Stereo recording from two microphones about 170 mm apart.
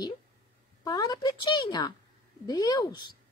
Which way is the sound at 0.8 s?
25° left (ahead or behind).